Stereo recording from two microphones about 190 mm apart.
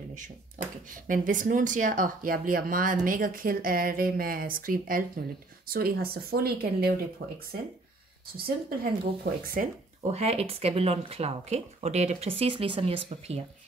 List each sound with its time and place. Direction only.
0.1 s speech: 40° right (ahead or behind); by 7.3 s 60° right (ahead or behind)
8.6 s speech: 50° right (ahead or behind); by 13.4 s 30° right (ahead or behind)